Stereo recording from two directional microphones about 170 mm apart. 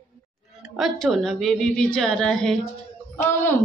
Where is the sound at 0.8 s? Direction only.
Centre (ahead or behind).